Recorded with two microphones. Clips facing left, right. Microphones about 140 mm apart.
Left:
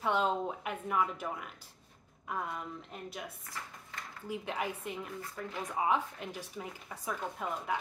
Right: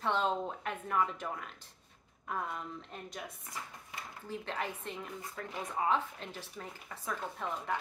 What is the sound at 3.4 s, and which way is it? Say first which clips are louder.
Drawer open or close: even; 15° right (ahead or behind).